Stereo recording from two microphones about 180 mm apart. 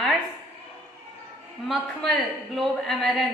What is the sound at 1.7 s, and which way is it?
A woman's voice, centre (ahead or behind).